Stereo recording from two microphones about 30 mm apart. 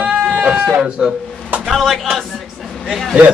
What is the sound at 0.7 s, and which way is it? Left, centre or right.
Speech, right.